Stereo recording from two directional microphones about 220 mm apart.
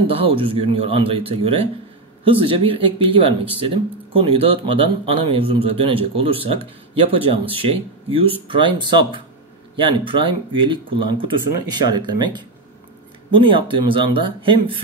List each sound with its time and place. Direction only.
0.0 s speech: 25° right (ahead or behind)